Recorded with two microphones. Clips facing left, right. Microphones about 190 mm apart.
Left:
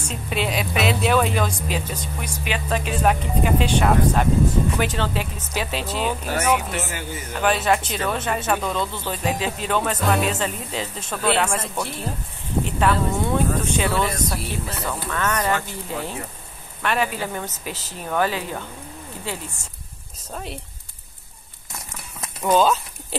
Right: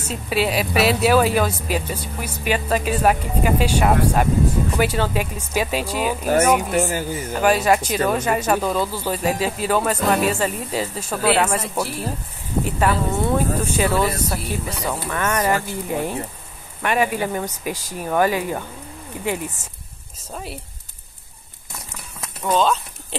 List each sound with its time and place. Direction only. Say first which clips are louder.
0.0 s a woman's voice: right 4 dB; 5° right (ahead or behind)
6.2 s speech: right 8 dB; 45° right (ahead or behind)
7.4 s a woman's voice: right 3 dB; 10° right (ahead or behind)
14.9 s speech: right 2 dB; 10° right (ahead or behind)
22.4 s speech: left 1 dB; 5° left (ahead or behind)